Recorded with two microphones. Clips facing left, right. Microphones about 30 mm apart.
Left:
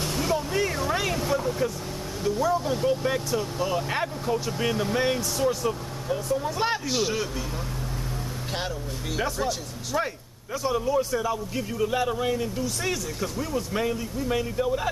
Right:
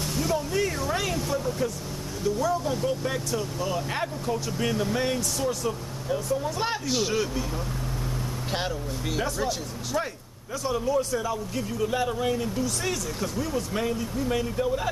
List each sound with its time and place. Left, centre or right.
0.0 s speech: centre
8.5 s speech: centre